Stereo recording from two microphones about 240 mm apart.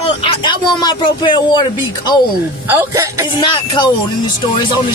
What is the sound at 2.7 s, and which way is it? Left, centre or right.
Speech, centre.